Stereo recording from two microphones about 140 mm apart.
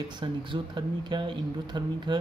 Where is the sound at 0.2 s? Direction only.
35° right (ahead or behind).